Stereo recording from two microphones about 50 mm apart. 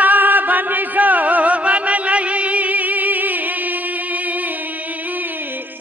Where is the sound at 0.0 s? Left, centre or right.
Right.